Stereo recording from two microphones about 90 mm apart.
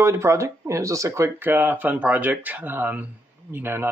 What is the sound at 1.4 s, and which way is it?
Speech, 20° right (ahead or behind).